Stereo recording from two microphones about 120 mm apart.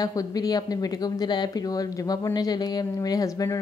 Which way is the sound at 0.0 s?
30° left (ahead or behind).